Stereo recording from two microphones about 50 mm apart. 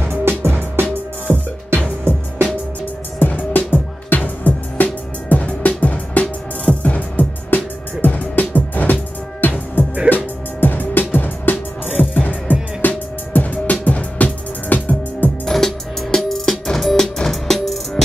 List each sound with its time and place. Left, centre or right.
0.0 s music: right
3.2 s music: left
15.4 s music: centre